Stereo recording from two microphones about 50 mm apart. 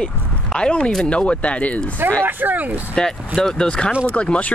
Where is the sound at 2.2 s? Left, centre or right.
Right.